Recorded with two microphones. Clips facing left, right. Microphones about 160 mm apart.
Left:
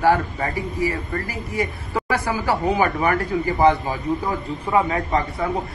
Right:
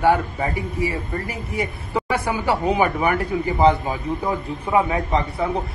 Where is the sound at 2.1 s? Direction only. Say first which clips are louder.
Even; 25° right (ahead or behind).